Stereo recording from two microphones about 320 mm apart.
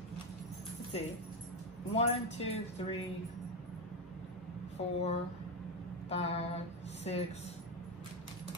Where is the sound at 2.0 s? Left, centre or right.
Centre.